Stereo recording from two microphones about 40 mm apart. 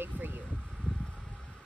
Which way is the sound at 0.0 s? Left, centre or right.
Right.